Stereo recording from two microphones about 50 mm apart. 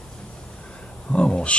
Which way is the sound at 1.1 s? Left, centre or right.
Left.